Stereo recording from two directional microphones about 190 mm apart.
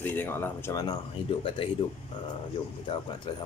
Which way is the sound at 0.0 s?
10° left (ahead or behind).